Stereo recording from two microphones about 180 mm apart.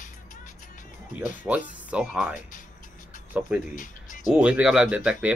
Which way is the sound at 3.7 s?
45° left (ahead or behind).